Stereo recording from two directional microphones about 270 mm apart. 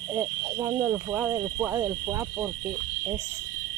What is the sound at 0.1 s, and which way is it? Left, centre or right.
Speech, centre.